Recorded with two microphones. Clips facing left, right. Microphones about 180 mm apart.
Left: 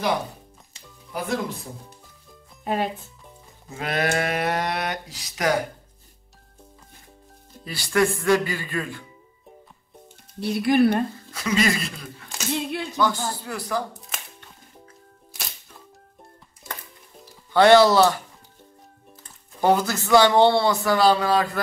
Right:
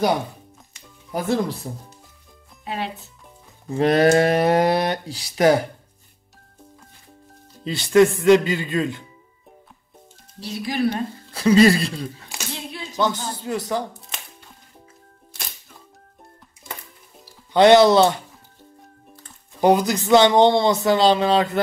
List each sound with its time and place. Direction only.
1.1 s speech: 35° right (ahead or behind)
2.6 s speech: 45° left (ahead or behind)
3.7 s speech: 35° right (ahead or behind)
7.6 s speech: 20° right (ahead or behind)
10.4 s speech: 60° left (ahead or behind)
11.3 s speech: 30° right (ahead or behind)
13.0 s speech: 20° right (ahead or behind)
13.9 s music: centre (ahead or behind)
17.5 s speech: 20° right (ahead or behind)
19.6 s speech: 15° right (ahead or behind)